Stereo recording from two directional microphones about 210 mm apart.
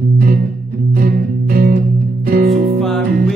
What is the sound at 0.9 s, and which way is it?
Music, 50° right (ahead or behind).